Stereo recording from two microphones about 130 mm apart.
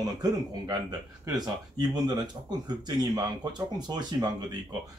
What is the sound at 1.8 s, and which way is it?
Speech, 35° right (ahead or behind).